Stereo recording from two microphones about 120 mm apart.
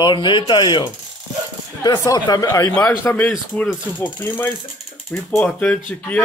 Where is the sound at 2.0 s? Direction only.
30° left (ahead or behind).